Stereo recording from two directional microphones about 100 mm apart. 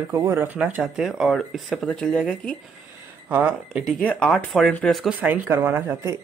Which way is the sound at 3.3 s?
15° right (ahead or behind).